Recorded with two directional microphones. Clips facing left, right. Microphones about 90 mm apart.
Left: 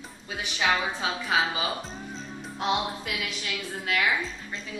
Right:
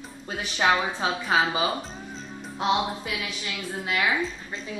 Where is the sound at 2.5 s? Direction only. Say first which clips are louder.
Right 3 dB; 10° right (ahead or behind).